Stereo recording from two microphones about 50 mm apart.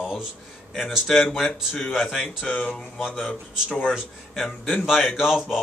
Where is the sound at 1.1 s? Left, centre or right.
Centre.